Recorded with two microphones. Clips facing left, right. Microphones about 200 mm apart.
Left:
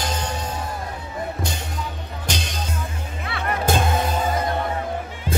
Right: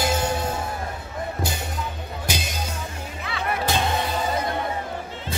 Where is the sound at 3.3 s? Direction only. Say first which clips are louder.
Left 3 dB; 50° left (ahead or behind).